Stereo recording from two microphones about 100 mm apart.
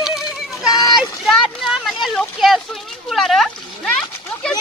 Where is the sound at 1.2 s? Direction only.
Centre (ahead or behind).